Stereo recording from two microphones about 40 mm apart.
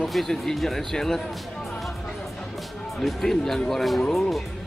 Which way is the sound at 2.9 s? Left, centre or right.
Centre.